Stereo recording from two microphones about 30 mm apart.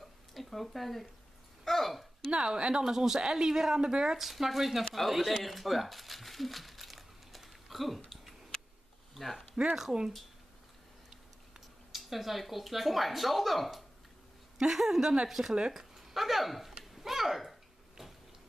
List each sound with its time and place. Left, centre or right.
0.3 s speech: centre
1.6 s a sound: centre
2.3 s a woman's voice: right
2.9 s a woman's voice: centre
3.7 s a woman's voice: right
4.2 s speech: centre
9.1 s speech: centre
11.9 s a woman's voice: centre
15.7 s a sound: centre